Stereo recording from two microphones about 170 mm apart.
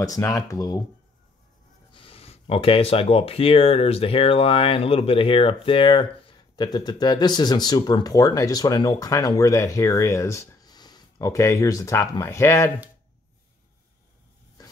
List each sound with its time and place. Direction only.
0.0 s speech: 20° left (ahead or behind)
1.9 s speech: 30° left (ahead or behind)